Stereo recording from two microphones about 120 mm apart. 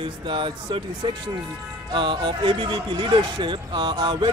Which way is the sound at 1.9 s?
40° right (ahead or behind).